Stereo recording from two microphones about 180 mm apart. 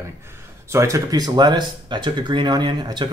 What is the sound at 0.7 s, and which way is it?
Speech, 15° right (ahead or behind).